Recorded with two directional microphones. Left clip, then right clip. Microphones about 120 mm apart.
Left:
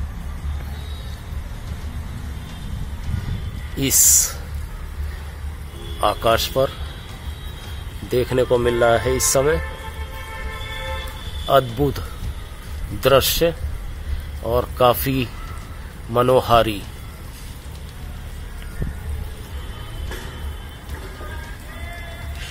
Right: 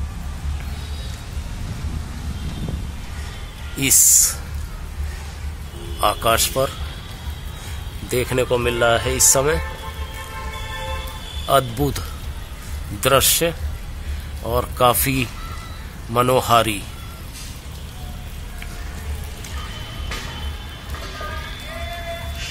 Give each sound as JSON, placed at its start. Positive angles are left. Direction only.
{"t": 3.7, "sound": "speech", "side_deg": 20}
{"t": 5.9, "sound": "a man's voice", "side_deg": 20}
{"t": 8.1, "sound": "a man's voice", "side_deg": 15}
{"t": 8.5, "sound": "speech", "side_deg": 30}
{"t": 11.4, "sound": "a man's voice", "side_deg": 10}
{"t": 13.0, "sound": "a man's voice", "side_deg": 20}